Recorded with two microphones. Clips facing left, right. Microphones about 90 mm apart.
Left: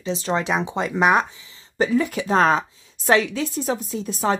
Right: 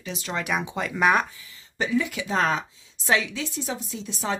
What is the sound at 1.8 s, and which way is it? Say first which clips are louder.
A woman's voice: left 5 dB; 40° left (ahead or behind).